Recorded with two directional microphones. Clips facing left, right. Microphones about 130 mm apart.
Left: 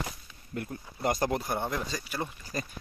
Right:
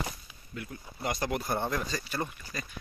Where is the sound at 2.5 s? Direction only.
45° left (ahead or behind).